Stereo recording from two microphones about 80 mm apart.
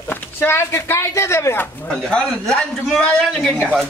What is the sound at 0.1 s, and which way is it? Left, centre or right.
Speech, left.